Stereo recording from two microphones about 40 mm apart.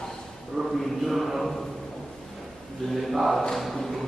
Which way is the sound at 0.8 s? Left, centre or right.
Centre.